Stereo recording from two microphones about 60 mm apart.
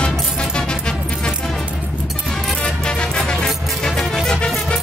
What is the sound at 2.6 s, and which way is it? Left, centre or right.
Music, centre.